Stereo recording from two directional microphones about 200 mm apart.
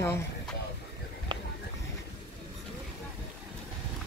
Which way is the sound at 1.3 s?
20° right (ahead or behind).